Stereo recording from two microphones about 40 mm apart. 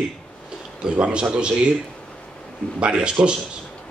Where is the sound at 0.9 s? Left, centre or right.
Right.